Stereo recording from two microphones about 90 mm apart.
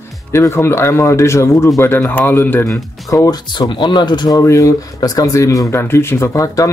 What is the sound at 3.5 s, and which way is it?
Speech, 60° left (ahead or behind).